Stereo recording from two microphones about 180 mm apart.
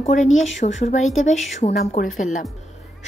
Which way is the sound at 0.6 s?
40° left (ahead or behind).